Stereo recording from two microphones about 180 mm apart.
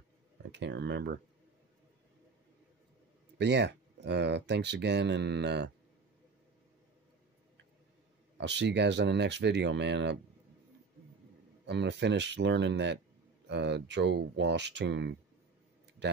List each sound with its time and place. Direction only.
0.5 s speech: 75° right (ahead or behind)
3.3 s speech: 75° right (ahead or behind)
8.4 s speech: 75° right (ahead or behind)
11.6 s speech: 70° right (ahead or behind)